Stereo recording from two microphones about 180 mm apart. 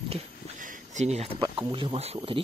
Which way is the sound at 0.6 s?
45° right (ahead or behind).